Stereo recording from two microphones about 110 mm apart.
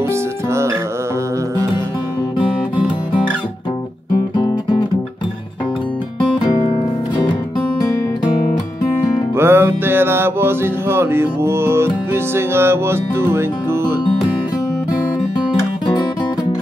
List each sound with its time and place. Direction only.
4.4 s music: 50° left (ahead or behind)
9.4 s mantra: 20° right (ahead or behind)